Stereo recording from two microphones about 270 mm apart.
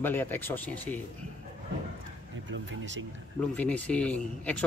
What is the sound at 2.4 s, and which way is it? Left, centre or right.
Speech, right.